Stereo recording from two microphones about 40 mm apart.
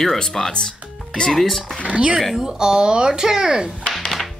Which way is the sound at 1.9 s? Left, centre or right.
Right.